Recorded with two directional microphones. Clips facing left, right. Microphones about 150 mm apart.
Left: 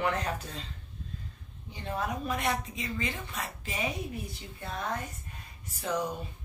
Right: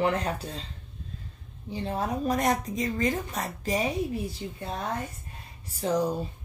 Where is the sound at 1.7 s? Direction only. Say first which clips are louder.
Right 4 dB; 30° right (ahead or behind).